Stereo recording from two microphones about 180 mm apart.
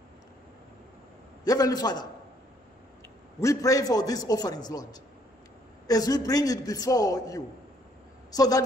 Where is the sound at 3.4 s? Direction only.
15° left (ahead or behind).